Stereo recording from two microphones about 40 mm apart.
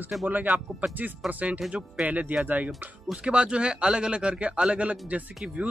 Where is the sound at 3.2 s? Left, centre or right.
Right.